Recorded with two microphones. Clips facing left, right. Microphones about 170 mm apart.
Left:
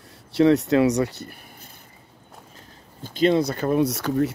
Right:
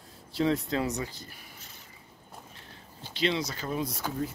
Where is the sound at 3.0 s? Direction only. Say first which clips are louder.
Left 10 dB; 45° left (ahead or behind); by 4.3 s 75° left (ahead or behind).